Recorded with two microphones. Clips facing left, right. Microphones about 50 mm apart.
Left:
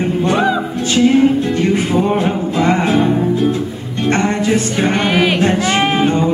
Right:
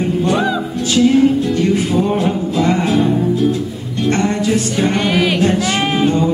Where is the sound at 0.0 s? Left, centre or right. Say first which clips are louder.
Left 1 dB; centre.